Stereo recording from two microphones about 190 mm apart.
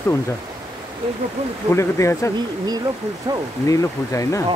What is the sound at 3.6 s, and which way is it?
Speech, 15° left (ahead or behind).